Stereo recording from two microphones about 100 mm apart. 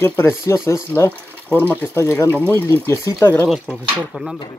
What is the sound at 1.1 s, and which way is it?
Speech, 15° left (ahead or behind).